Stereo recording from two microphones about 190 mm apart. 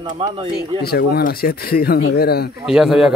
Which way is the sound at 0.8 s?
55° left (ahead or behind).